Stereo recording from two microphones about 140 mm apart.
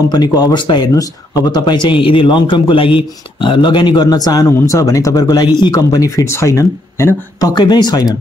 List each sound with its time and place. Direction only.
0.1 s speech: 30° left (ahead or behind)